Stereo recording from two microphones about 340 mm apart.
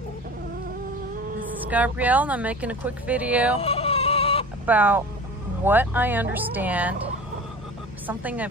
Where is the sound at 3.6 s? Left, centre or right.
Centre.